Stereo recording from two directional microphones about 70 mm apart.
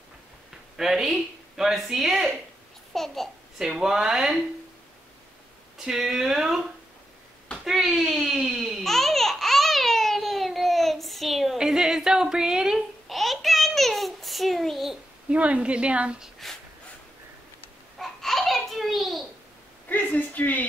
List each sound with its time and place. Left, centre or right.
0.7 s a child's voice: centre
3.6 s a woman's voice: centre
5.8 s a woman's voice: centre
7.6 s speech: centre
8.5 s babbling: centre
15.2 s a woman's voice: centre
17.9 s a sound: centre
19.9 s a sound: left